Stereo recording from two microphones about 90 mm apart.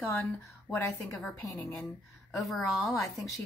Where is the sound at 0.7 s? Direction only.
30° left (ahead or behind).